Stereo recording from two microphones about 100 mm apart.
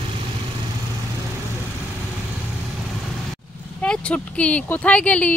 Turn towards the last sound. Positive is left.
turn(degrees=15)  # may be behind; listen again after turning